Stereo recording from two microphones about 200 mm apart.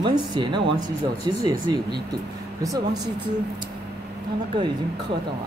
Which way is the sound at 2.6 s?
20° right (ahead or behind).